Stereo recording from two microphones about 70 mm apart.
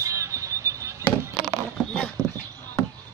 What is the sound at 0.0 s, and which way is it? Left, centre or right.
Vehicle, right.